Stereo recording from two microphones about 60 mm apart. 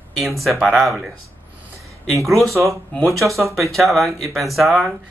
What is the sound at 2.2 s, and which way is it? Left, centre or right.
Speech, centre.